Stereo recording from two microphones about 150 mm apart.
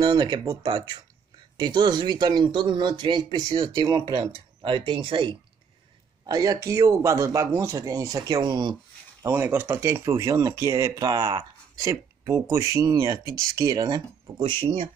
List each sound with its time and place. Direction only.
0.0 s speech: 30° right (ahead or behind)
9.2 s speech: 15° right (ahead or behind); by 14.9 s 35° right (ahead or behind)